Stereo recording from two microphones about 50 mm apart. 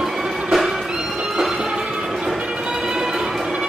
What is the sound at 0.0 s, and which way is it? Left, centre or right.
Music, centre.